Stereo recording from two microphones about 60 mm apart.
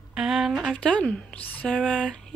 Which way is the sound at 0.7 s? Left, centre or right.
Centre.